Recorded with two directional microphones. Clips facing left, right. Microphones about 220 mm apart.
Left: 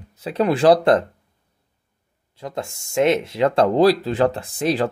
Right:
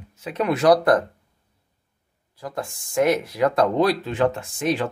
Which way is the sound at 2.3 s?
25° left (ahead or behind).